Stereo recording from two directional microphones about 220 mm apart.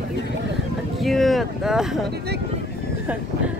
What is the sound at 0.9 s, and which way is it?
Speech, centre (ahead or behind).